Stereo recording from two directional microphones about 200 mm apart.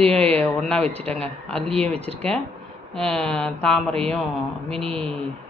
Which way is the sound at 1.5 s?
30° right (ahead or behind).